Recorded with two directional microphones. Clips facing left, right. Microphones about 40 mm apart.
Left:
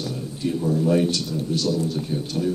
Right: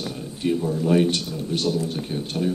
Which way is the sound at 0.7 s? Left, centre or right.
Centre.